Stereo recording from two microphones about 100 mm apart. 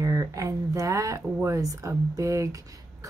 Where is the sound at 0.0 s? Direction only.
35° right (ahead or behind).